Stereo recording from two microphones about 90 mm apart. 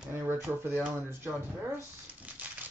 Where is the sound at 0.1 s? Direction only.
25° right (ahead or behind).